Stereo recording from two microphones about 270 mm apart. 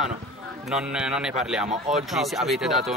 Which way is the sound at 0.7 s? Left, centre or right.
Centre.